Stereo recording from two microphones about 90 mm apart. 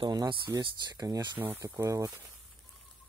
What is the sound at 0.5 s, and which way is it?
Speech, 45° right (ahead or behind).